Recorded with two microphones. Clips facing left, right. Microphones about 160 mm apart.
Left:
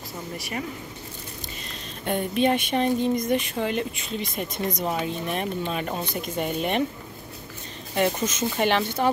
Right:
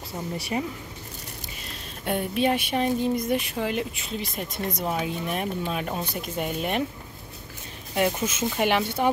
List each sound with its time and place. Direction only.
0.4 s speech: 30° right (ahead or behind)
2.0 s speech: 5° right (ahead or behind)
7.9 s speech: 5° right (ahead or behind)